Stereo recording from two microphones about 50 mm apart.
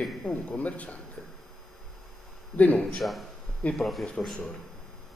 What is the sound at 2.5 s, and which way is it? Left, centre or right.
Speech, left.